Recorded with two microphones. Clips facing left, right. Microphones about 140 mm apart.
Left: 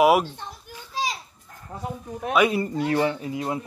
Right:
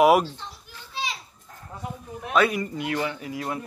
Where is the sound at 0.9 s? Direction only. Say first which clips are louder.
Left 4 dB; 40° left (ahead or behind).